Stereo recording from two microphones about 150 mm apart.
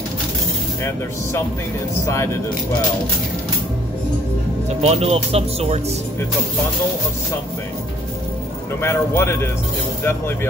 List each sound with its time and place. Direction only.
2.0 s speech: 20° left (ahead or behind)
4.6 s speech: 45° right (ahead or behind)
8.8 s a man's voice: 15° left (ahead or behind)